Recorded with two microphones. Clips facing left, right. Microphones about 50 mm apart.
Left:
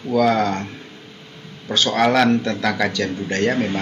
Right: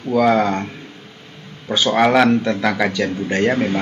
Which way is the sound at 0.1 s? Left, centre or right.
Centre.